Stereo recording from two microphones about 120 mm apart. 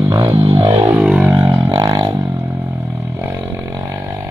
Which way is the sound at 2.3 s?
15° right (ahead or behind).